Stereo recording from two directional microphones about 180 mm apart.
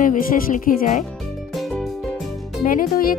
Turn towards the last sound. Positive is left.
turn(degrees=50)  # may be behind; listen again after turning